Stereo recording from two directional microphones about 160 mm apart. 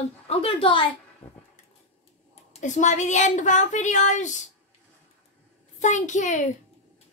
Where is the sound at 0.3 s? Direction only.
35° left (ahead or behind).